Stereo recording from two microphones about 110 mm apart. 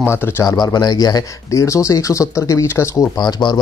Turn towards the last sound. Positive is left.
turn(degrees=40)  # may be behind; listen again after turning